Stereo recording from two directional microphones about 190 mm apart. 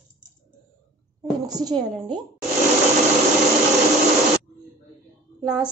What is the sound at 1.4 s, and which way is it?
Speech, 20° right (ahead or behind).